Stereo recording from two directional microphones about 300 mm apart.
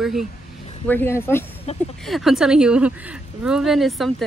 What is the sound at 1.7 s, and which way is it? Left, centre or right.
Speech, left.